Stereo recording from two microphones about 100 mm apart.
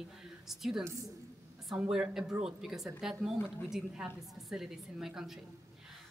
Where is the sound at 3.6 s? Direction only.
5° right (ahead or behind).